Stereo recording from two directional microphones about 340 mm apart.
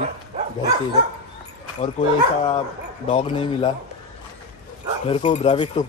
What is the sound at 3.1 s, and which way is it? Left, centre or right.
Speech, centre.